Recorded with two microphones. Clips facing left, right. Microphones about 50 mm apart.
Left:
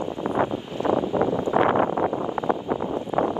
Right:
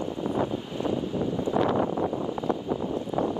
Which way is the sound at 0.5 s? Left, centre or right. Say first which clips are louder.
Left 5 dB; left.